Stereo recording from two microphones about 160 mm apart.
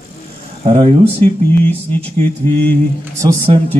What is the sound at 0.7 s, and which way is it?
Music, 30° right (ahead or behind).